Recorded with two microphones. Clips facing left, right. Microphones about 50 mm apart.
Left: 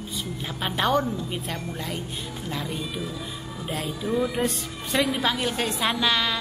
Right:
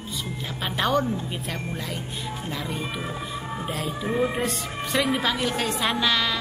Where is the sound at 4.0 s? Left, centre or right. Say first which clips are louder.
Right 1 dB; right.